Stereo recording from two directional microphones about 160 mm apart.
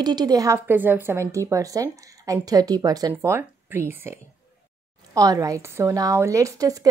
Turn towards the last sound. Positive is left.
turn(degrees=-20)  # may be behind; listen again after turning